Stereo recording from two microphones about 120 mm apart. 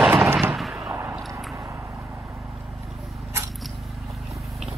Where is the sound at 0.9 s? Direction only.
20° right (ahead or behind).